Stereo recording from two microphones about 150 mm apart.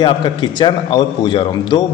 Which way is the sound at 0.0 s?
30° left (ahead or behind).